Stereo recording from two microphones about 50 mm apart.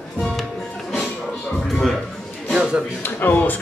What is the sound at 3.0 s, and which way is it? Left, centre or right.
Music, left.